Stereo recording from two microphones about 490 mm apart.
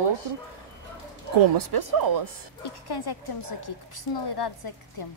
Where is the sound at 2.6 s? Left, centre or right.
Left.